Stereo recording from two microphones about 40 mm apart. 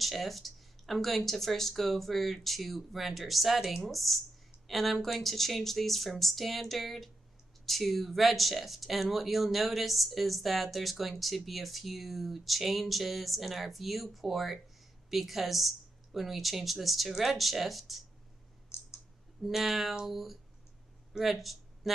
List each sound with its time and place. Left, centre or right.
0.0 s speech: centre
18.7 s clicking: left
19.4 s speech: centre